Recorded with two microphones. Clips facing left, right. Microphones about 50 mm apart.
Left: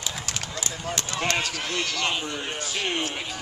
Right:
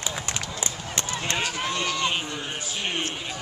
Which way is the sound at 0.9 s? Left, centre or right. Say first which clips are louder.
Left 1 dB; right.